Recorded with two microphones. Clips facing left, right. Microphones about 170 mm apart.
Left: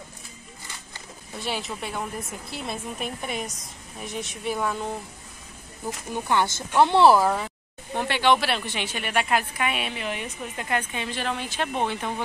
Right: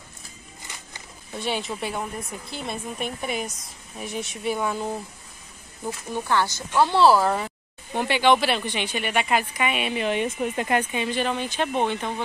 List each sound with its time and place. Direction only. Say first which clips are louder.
1.4 s speech: right 3 dB; centre (ahead or behind)
6.1 s speech: even; 15° left (ahead or behind)
7.2 s speech: right 1 dB; centre (ahead or behind)
9.9 s speech: right 7 dB; 25° right (ahead or behind)
10.9 s speech: right 4 dB; 5° right (ahead or behind)